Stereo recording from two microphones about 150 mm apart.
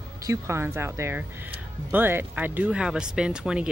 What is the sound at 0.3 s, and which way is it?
Speech, 20° right (ahead or behind).